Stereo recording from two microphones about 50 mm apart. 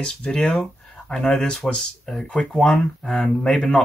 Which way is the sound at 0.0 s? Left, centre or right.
Centre.